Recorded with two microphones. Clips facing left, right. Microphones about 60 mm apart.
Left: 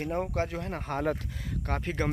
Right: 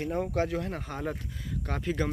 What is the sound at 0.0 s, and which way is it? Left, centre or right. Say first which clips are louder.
Speech: right 1 dB; left.